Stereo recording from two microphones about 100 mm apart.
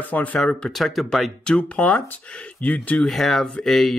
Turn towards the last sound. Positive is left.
turn(degrees=5)  # may be behind; listen again after turning